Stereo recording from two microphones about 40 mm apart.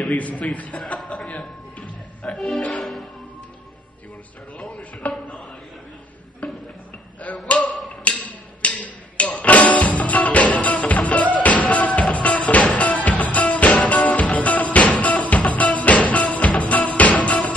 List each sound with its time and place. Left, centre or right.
0.1 s a man's voice: left
0.9 s chuckle: centre
1.3 s a sound: left
2.3 s music: centre
4.6 s a sound: left
6.4 s music: left
7.2 s a sound: left
8.0 s wood block: left
9.4 s music: left